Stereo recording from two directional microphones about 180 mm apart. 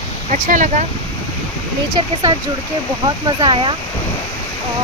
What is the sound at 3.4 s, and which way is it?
Speech, 25° right (ahead or behind).